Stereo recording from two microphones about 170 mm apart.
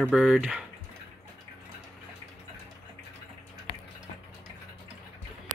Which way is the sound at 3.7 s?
35° left (ahead or behind).